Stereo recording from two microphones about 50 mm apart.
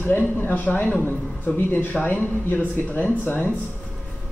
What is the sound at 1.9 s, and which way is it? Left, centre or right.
Speech, left.